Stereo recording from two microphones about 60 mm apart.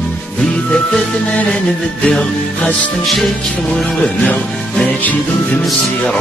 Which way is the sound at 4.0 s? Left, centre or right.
Centre.